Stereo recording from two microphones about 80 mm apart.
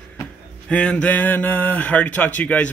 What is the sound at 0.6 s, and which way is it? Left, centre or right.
Speech, centre.